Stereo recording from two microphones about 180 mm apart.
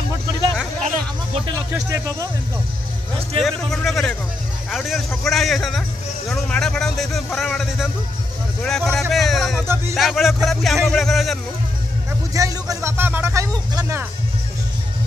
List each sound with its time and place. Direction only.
0.8 s a sound: 35° right (ahead or behind)
3.3 s a man's voice: centre (ahead or behind)
12.4 s speech: 20° right (ahead or behind)